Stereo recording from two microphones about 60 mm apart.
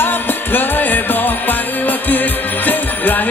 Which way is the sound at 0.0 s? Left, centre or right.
Left.